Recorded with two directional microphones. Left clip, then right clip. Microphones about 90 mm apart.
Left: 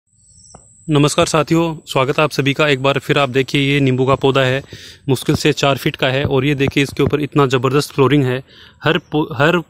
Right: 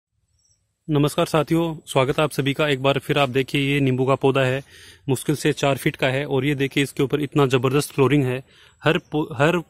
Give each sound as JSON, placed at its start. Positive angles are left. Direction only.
{"t": 0.8, "sound": "speech", "side_deg": -5}
{"t": 1.4, "sound": "speech", "side_deg": -35}
{"t": 4.4, "sound": "speech", "side_deg": -15}
{"t": 6.5, "sound": "speech", "side_deg": -25}
{"t": 8.3, "sound": "speech", "side_deg": -10}